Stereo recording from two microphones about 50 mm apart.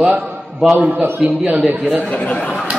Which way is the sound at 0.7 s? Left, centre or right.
Right.